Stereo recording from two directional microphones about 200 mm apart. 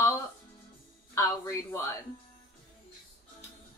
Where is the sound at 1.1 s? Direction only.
15° left (ahead or behind).